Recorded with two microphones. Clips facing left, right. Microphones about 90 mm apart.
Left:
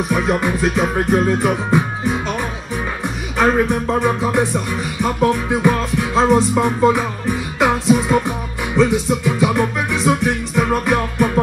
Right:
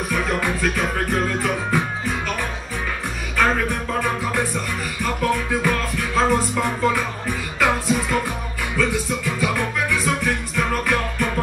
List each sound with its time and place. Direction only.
0.1 s music: 20° left (ahead or behind)
3.3 s music: 25° left (ahead or behind)